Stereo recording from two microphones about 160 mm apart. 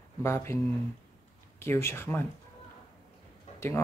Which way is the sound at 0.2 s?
15° left (ahead or behind).